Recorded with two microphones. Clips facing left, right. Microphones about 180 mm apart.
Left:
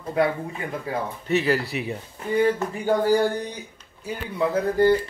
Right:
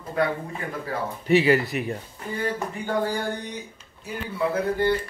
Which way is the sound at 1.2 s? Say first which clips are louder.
Right 5 dB; 10° right (ahead or behind).